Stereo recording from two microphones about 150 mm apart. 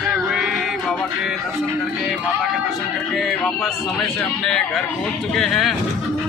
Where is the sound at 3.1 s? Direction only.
Centre (ahead or behind).